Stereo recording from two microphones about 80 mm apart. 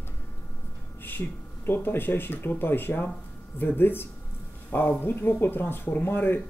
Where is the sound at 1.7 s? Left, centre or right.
Left.